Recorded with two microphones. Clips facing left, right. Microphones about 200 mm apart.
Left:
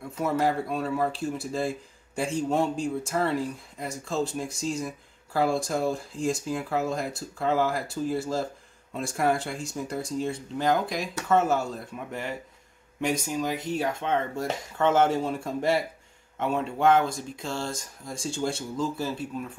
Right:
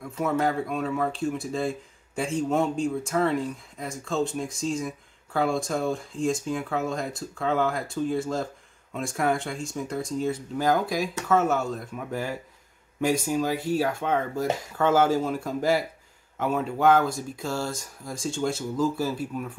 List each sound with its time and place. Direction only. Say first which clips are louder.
0.2 s speech: even; centre (ahead or behind)
13.4 s speech: right 3 dB; 5° right (ahead or behind)